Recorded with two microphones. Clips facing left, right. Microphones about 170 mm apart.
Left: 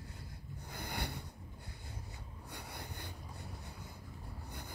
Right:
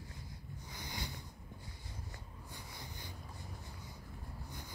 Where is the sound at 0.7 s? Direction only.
60° left (ahead or behind).